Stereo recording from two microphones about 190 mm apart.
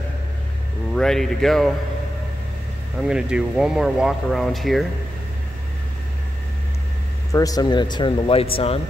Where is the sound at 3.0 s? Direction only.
5° right (ahead or behind).